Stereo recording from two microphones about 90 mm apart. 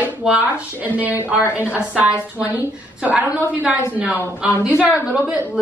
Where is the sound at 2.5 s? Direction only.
15° right (ahead or behind).